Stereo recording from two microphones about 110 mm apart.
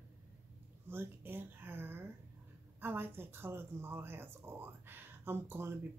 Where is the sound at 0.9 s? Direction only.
20° right (ahead or behind).